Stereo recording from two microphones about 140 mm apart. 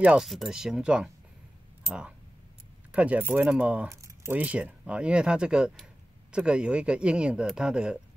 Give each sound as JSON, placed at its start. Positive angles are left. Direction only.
{"t": 0.0, "sound": "speech", "side_deg": -5}
{"t": 3.9, "sound": "keys jangling", "side_deg": -20}
{"t": 4.4, "sound": "speech", "side_deg": -10}